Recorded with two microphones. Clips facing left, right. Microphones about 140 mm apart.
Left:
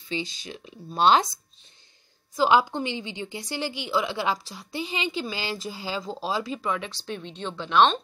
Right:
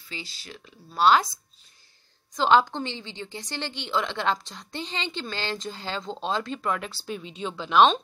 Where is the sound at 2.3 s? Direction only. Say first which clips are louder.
Even; 10° left (ahead or behind).